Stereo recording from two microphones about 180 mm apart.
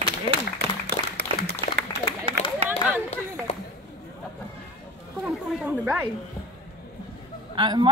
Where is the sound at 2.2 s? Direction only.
35° right (ahead or behind).